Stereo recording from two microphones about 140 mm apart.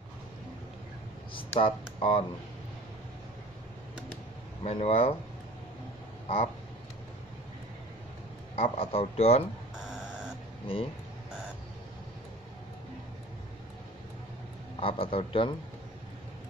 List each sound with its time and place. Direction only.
1.6 s a man's voice: 40° left (ahead or behind)
4.6 s speech: 45° left (ahead or behind)
6.2 s quack: 50° left (ahead or behind)
8.5 s speech: 45° left (ahead or behind)
9.8 s a sound: 5° right (ahead or behind)
14.8 s a man's voice: 40° left (ahead or behind)